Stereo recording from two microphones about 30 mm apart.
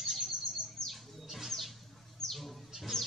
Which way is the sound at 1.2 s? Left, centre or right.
Centre.